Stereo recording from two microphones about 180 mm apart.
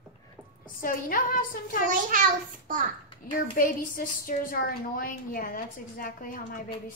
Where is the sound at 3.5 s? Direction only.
50° left (ahead or behind).